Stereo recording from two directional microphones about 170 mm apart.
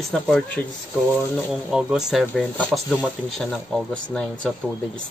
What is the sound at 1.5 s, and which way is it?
Speech, 5° right (ahead or behind).